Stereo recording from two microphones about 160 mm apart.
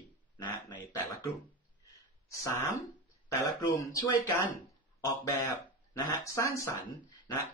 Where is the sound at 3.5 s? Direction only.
20° left (ahead or behind).